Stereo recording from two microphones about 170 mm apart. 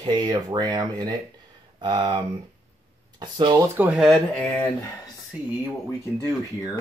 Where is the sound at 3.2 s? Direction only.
25° right (ahead or behind).